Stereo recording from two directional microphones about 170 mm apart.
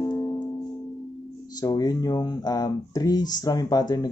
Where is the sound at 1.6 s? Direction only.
25° left (ahead or behind).